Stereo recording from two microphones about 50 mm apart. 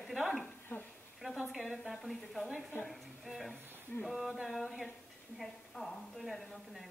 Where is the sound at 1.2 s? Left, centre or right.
Centre.